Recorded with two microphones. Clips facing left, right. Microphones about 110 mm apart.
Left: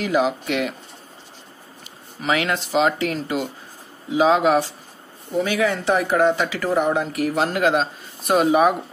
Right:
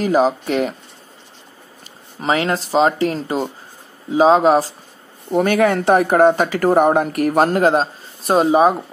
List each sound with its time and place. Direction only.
0.0 s speech: 40° right (ahead or behind)
2.2 s speech: 35° right (ahead or behind)
5.3 s speech: 55° right (ahead or behind); by 8.7 s 30° right (ahead or behind)